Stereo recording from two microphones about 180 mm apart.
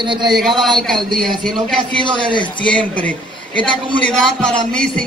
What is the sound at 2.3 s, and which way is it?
Speech, 25° left (ahead or behind).